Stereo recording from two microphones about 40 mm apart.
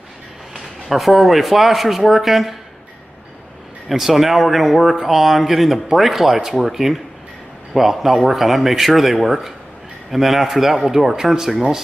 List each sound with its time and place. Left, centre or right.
0.8 s speech: centre
3.9 s speech: centre